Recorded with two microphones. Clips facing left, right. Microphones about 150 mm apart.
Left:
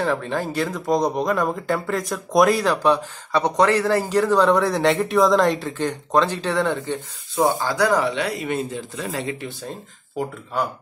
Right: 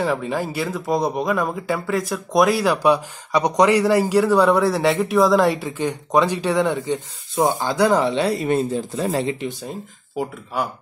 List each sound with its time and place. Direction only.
0.0 s speech: 10° right (ahead or behind); by 9.5 s 30° right (ahead or behind)
9.5 s speech: 10° right (ahead or behind)